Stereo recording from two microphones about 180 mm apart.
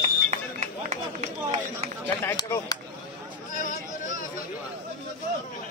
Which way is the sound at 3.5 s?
40° left (ahead or behind).